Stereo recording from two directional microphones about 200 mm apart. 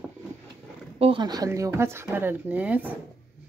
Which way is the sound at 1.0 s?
25° right (ahead or behind).